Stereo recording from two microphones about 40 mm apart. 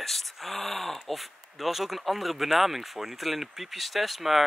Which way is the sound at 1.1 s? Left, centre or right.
Centre.